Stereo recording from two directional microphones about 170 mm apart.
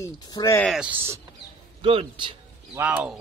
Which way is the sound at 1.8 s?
30° right (ahead or behind).